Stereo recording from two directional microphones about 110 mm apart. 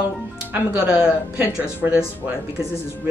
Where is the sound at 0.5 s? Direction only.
10° right (ahead or behind).